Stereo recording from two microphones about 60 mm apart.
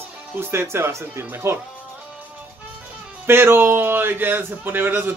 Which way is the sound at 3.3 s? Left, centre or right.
Right.